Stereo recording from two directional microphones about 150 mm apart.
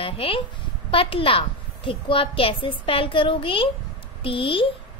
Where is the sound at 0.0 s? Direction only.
35° left (ahead or behind).